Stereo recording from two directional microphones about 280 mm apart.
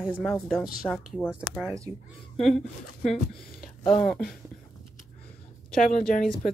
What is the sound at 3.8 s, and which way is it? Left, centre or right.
Speech, centre.